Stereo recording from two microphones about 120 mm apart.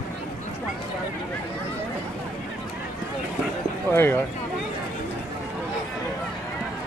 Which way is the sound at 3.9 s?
20° left (ahead or behind).